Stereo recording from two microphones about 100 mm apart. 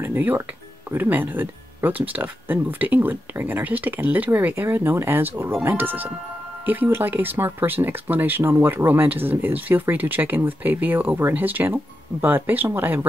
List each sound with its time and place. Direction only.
0.0 s speech: 20° right (ahead or behind)